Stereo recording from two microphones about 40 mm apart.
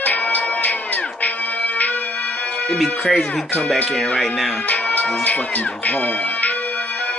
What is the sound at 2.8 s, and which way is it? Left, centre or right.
Speech, centre.